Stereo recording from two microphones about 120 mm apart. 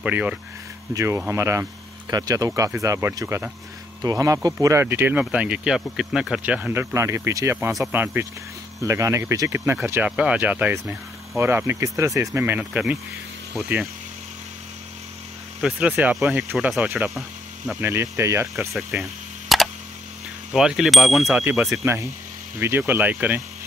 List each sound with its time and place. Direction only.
0.0 s speech: 10° right (ahead or behind); by 4.8 s 25° right (ahead or behind)
4.8 s speech: 15° right (ahead or behind)
10.1 s speech: 10° right (ahead or behind)
15.6 s speech: 10° right (ahead or behind)
17.7 s speech: 20° right (ahead or behind)
19.5 s tick: centre (ahead or behind)
20.5 s speech: 5° right (ahead or behind)